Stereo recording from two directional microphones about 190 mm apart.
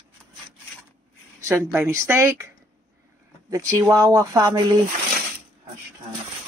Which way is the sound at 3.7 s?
15° right (ahead or behind).